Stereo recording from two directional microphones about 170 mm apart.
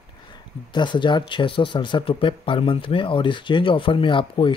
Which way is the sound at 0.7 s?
25° left (ahead or behind).